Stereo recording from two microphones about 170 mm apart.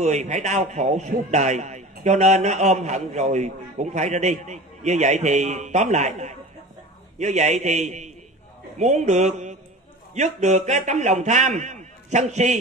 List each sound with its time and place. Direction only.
0.0 s a man's voice: 45° right (ahead or behind)